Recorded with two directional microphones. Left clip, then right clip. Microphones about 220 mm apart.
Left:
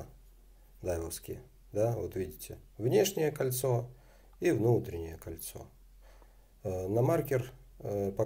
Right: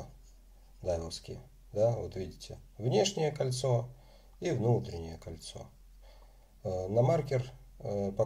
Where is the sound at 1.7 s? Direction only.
20° left (ahead or behind).